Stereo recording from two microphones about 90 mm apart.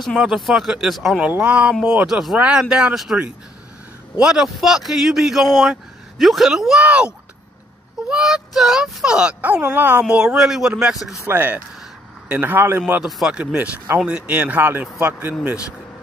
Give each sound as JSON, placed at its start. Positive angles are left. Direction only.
{"t": 0.2, "sound": "a man's voice", "side_deg": -5}
{"t": 1.2, "sound": "speech", "side_deg": -15}
{"t": 4.2, "sound": "a man's voice", "side_deg": -5}
{"t": 8.1, "sound": "speech", "side_deg": -5}
{"t": 11.2, "sound": "speech", "side_deg": -20}
{"t": 13.0, "sound": "speech", "side_deg": -10}